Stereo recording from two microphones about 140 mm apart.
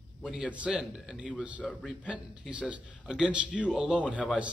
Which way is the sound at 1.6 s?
10° left (ahead or behind).